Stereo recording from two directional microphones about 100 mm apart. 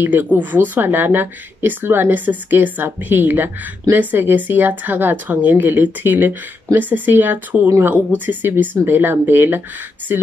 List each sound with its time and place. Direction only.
0.0 s speech: 20° right (ahead or behind)